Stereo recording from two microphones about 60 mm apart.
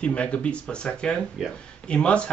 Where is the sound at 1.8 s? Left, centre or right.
Centre.